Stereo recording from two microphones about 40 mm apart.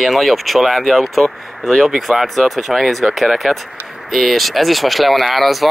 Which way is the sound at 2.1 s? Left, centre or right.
Centre.